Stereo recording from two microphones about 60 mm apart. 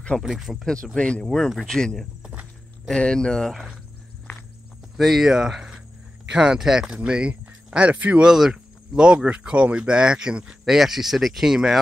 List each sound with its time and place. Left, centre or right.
0.2 s speech: centre
0.9 s speech: centre
1.2 s speech: centre
1.8 s speech: centre
4.9 s speech: centre; by 8.3 s right
8.3 s speech: centre